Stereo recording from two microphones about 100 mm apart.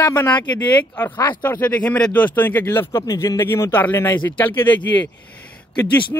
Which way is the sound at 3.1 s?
40° left (ahead or behind).